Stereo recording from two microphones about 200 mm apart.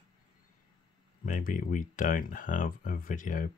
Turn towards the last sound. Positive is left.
turn(degrees=40)  # may be behind; listen again after turning